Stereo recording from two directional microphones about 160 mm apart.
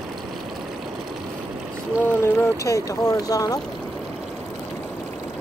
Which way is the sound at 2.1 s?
15° left (ahead or behind).